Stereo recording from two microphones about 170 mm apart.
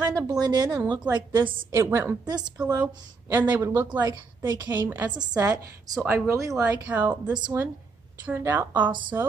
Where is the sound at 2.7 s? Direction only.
10° right (ahead or behind); by 4.7 s 25° right (ahead or behind).